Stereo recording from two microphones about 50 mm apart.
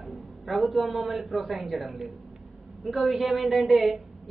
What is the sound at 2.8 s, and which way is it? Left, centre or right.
A woman's voice, centre.